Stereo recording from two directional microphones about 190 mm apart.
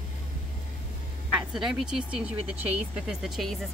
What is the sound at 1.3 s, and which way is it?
Speech, centre (ahead or behind).